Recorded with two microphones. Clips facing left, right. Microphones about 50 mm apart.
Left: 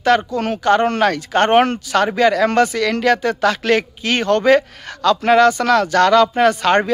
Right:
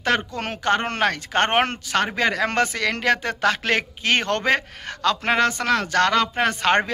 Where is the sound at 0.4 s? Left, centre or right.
Right.